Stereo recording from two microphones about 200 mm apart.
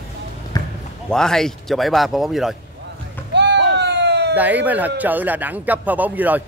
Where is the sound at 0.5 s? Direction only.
20° left (ahead or behind).